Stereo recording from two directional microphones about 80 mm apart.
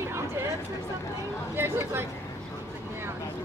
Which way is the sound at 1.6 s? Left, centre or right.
Right.